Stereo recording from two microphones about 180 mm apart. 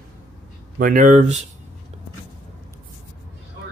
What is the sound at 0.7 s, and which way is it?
Speech, 50° right (ahead or behind).